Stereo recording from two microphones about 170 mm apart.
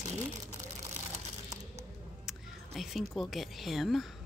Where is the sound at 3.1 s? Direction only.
Centre (ahead or behind).